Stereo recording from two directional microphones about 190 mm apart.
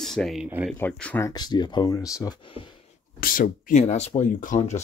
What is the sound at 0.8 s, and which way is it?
Speech, 5° left (ahead or behind).